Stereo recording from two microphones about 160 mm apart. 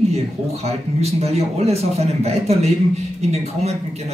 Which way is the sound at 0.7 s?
40° right (ahead or behind).